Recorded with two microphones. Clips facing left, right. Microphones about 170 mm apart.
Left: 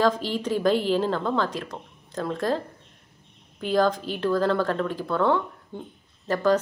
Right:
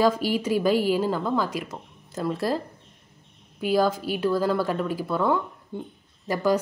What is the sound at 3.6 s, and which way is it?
A woman's voice, 10° right (ahead or behind).